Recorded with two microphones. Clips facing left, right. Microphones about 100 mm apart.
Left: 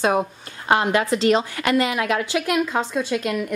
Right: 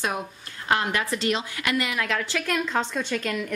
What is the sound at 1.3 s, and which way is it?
Speech, 40° left (ahead or behind).